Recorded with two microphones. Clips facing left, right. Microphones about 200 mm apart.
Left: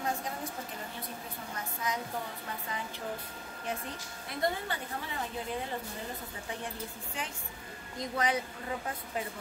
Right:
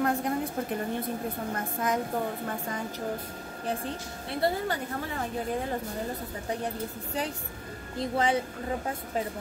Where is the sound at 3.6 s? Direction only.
35° right (ahead or behind).